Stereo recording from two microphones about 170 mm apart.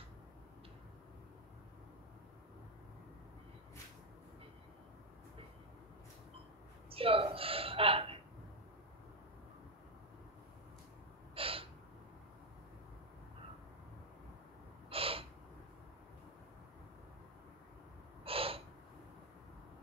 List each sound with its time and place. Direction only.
6.9 s a woman's voice: 35° right (ahead or behind)
11.3 s gasp: 35° right (ahead or behind)
14.9 s gasp: 35° right (ahead or behind)
18.2 s gasp: 35° right (ahead or behind)